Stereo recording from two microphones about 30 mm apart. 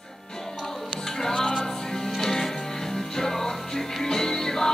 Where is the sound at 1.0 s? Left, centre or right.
Centre.